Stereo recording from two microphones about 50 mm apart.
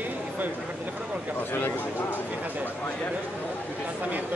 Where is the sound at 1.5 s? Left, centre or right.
Left.